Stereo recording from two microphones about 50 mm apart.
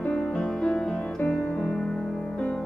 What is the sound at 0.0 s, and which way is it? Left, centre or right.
Music, left.